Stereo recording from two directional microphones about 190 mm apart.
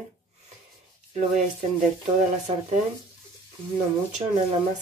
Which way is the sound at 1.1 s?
40° right (ahead or behind).